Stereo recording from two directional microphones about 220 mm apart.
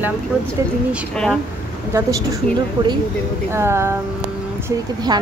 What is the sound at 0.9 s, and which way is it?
Speech, centre (ahead or behind).